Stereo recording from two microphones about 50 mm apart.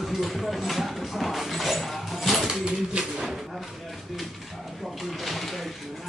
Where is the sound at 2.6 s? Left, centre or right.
Centre.